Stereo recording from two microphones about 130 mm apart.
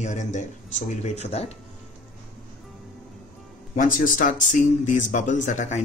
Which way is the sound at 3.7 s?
90° left.